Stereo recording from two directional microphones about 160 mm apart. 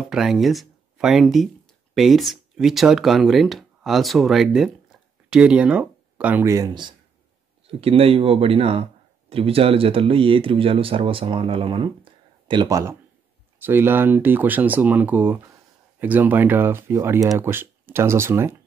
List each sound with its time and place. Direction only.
0.0 s speech: 5° right (ahead or behind)